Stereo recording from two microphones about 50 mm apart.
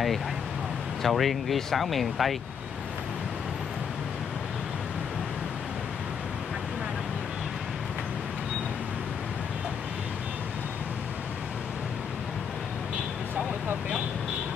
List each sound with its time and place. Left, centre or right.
1.0 s speech: centre